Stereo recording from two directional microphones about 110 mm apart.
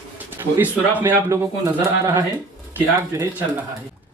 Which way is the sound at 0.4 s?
15° right (ahead or behind).